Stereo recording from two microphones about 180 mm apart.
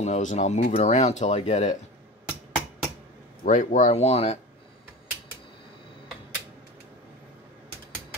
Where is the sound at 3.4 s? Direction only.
45° left (ahead or behind).